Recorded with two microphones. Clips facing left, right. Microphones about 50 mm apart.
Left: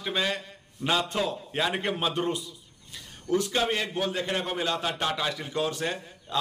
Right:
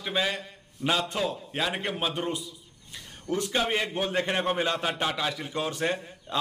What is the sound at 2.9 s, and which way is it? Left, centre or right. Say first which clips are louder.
A man's voice: left 4 dB; centre.